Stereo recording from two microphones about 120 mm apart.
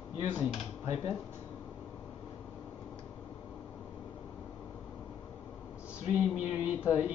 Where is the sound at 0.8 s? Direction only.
55° left (ahead or behind).